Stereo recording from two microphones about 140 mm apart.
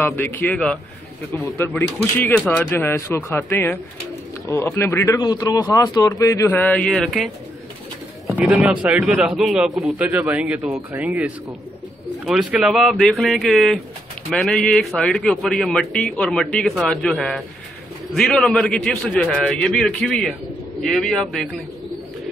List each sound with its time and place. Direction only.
0.0 s a man's voice: 15° left (ahead or behind)
5.1 s a man's voice: 30° left (ahead or behind); by 7.2 s centre (ahead or behind)
8.3 s a man's voice: 5° right (ahead or behind)